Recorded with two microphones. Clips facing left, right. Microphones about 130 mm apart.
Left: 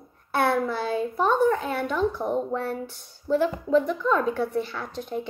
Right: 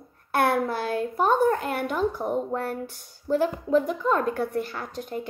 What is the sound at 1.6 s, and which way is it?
A woman's voice, 10° right (ahead or behind).